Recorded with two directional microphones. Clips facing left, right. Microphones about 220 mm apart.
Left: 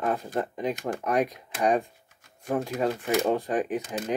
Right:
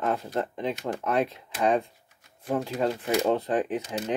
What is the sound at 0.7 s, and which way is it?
Speech, 50° left (ahead or behind).